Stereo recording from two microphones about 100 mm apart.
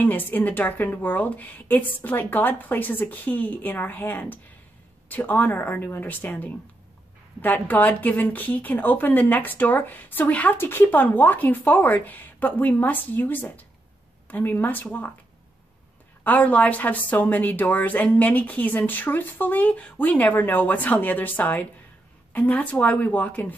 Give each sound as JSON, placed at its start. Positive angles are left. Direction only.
{"t": 0.0, "sound": "speech", "side_deg": 20}
{"t": 16.3, "sound": "speech", "side_deg": 15}